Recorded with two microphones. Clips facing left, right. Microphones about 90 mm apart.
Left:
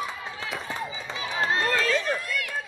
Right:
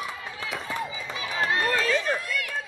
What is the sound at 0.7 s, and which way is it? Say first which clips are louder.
Run: right 1 dB; 25° left (ahead or behind).